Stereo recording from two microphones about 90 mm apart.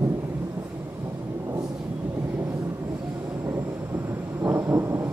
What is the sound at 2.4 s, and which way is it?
Vehicle, 35° right (ahead or behind).